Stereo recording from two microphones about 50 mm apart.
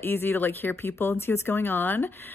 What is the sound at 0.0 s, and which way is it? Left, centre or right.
Speech, left.